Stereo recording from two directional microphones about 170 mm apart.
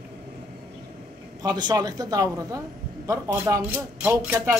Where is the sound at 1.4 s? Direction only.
25° right (ahead or behind).